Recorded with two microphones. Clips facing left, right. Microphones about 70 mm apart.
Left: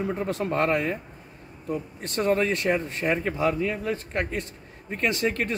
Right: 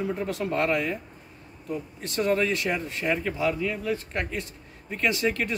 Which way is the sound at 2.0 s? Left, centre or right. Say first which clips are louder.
Left 1 dB; left.